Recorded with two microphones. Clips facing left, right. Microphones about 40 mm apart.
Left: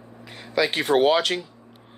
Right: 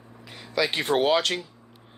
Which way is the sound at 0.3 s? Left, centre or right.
Centre.